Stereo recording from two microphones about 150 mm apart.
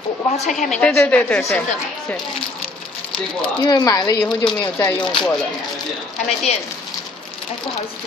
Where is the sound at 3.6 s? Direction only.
30° left (ahead or behind).